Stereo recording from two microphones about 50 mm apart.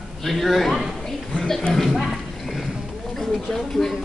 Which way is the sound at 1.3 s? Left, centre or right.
Centre.